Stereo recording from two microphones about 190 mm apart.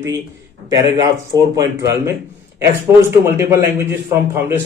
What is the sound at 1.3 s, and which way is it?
A man's voice, 20° right (ahead or behind).